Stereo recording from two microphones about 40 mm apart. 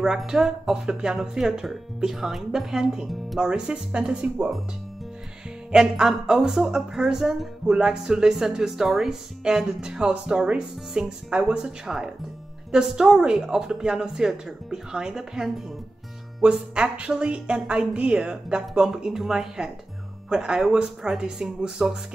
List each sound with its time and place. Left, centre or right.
0.3 s speech: centre
3.3 s a woman's voice: right
5.7 s a woman's voice: centre
11.8 s speech: centre
16.4 s a woman's voice: right